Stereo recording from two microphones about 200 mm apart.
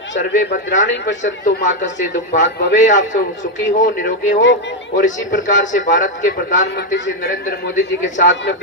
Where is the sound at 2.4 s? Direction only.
60° left (ahead or behind).